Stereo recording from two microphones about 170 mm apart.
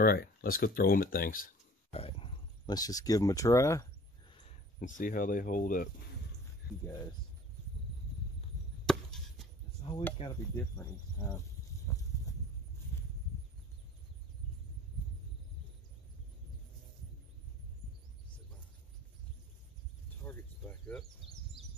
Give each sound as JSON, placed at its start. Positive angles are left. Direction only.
{"t": 0.0, "sound": "speech", "side_deg": 60}
{"t": 1.9, "sound": "speech", "side_deg": 35}
{"t": 4.7, "sound": "speech", "side_deg": 50}
{"t": 8.8, "sound": "chop", "side_deg": 0}
{"t": 9.8, "sound": "a sound", "side_deg": 35}
{"t": 10.2, "sound": "speech", "side_deg": 35}
{"t": 10.8, "sound": "speech", "side_deg": 20}
{"t": 11.9, "sound": "horse", "side_deg": 20}
{"t": 20.2, "sound": "a sound", "side_deg": 15}